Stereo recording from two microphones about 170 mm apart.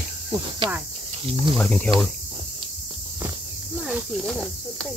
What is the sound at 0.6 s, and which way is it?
Speech, 30° right (ahead or behind).